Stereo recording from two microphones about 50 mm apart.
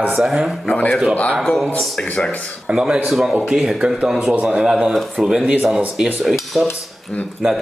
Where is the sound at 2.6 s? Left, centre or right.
Centre.